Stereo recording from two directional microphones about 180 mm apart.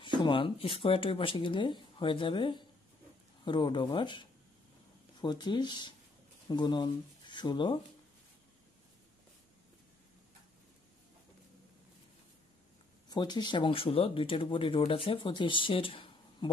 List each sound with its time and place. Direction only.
0.0 s speech: 25° left (ahead or behind)
13.1 s speech: 25° left (ahead or behind)